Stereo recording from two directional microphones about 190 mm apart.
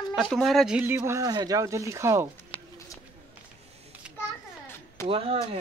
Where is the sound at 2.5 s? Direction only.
25° left (ahead or behind).